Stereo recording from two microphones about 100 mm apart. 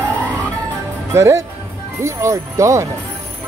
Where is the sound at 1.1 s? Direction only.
30° right (ahead or behind).